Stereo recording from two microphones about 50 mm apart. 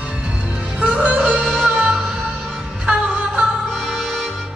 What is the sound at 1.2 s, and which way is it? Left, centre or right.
Music, centre.